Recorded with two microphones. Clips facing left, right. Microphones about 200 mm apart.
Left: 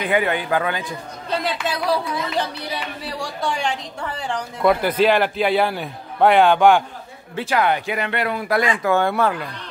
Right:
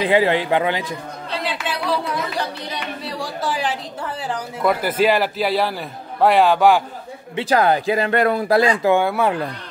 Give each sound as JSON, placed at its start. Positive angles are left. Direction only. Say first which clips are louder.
{"t": 0.0, "sound": "a man's voice", "louder": "right 4 dB", "side_deg": -25}
{"t": 1.4, "sound": "a sound", "louder": "right 1 dB", "side_deg": 40}
{"t": 2.7, "sound": "a woman's voice", "louder": "even", "side_deg": 0}
{"t": 7.4, "sound": "speech", "louder": "right 4 dB", "side_deg": -35}
{"t": 8.9, "sound": "speech", "louder": "right 1 dB", "side_deg": -5}